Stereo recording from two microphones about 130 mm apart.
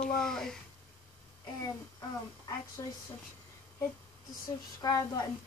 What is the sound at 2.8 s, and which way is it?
Speech, 30° left (ahead or behind).